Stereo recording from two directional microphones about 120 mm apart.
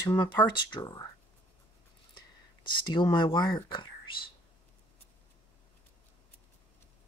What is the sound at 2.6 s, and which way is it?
Speech, 40° left (ahead or behind).